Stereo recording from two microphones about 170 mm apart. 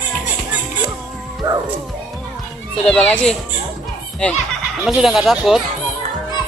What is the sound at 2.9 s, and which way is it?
Speech, 5° left (ahead or behind).